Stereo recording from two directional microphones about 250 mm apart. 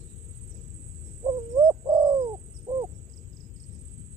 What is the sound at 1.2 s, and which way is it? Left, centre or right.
Bird, centre.